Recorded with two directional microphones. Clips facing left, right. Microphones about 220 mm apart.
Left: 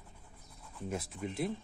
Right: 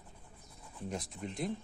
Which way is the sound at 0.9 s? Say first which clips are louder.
Left 3 dB; 5° left (ahead or behind).